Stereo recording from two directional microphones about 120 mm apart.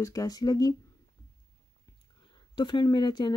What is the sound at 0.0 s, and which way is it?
Speech, 30° left (ahead or behind).